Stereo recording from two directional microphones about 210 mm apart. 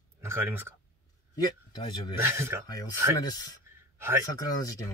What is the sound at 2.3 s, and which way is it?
Speech, 10° right (ahead or behind).